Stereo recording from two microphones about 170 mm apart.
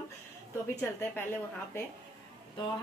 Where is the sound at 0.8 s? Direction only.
15° left (ahead or behind).